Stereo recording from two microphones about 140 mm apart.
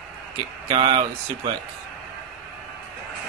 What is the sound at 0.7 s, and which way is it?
Speech, 40° right (ahead or behind).